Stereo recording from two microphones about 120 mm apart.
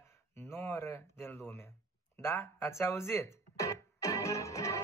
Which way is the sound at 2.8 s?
20° left (ahead or behind).